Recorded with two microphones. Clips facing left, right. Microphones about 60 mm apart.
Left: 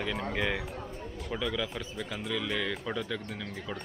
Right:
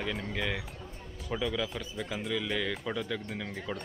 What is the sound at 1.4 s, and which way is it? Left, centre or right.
Speech, centre.